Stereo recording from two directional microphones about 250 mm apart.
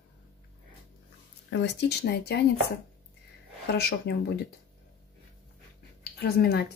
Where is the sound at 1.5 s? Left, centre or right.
Left.